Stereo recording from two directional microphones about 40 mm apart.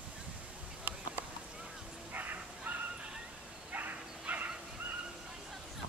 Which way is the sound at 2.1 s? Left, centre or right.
Right.